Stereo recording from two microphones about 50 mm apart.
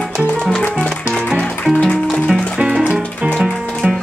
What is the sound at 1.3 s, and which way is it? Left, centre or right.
Music, left.